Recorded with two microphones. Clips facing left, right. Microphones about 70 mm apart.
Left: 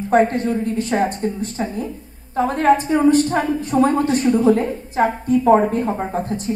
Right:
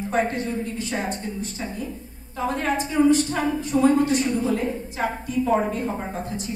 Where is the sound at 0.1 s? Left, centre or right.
Left.